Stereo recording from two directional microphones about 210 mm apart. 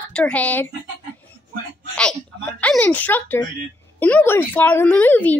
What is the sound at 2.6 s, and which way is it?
Speech, 5° left (ahead or behind).